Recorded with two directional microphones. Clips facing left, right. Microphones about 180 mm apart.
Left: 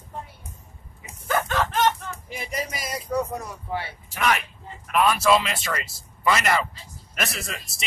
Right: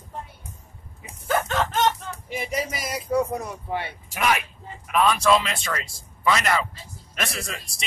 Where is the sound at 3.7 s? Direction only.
20° right (ahead or behind).